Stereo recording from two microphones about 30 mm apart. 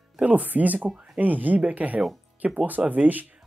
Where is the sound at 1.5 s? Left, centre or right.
Right.